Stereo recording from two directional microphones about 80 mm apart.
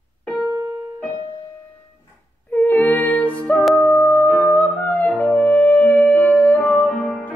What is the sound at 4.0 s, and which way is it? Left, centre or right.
Music, left.